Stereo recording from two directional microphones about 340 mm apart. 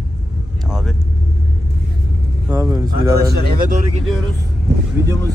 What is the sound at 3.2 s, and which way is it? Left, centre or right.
Speech, right.